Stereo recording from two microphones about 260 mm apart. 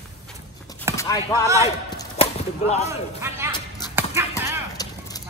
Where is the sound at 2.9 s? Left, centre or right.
Centre.